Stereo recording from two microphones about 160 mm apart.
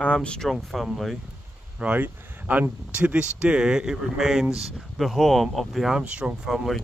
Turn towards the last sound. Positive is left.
turn(degrees=0)  # may be behind; listen again after turning